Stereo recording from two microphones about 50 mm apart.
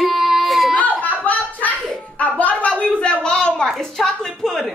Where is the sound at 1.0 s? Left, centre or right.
Left; by 4.7 s centre.